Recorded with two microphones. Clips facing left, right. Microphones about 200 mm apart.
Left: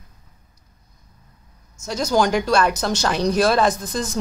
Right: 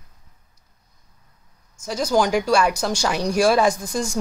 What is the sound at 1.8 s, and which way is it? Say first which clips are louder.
Speech: even; 10° right (ahead or behind).